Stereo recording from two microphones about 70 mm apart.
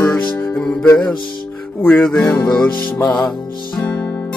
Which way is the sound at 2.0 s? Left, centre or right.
Left.